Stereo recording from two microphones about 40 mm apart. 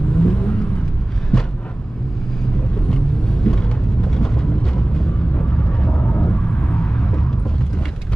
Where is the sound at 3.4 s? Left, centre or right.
Centre.